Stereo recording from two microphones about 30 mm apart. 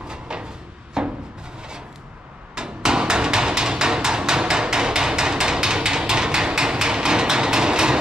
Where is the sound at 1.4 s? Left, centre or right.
Right.